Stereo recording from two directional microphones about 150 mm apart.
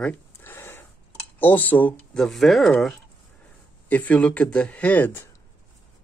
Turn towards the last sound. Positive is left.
turn(degrees=15)  # may be behind; listen again after turning